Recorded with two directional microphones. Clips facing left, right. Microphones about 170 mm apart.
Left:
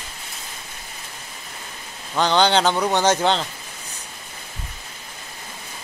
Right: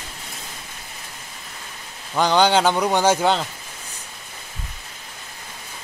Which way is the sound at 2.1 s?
10° right (ahead or behind).